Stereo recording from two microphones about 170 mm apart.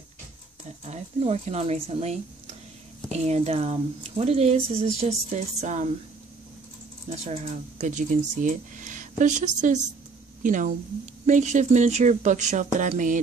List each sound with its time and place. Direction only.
0.8 s speech: 40° right (ahead or behind)
7.8 s speech: 45° right (ahead or behind)